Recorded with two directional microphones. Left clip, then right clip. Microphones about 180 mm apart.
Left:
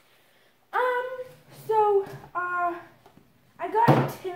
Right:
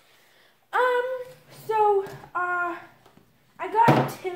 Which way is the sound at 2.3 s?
35° right (ahead or behind).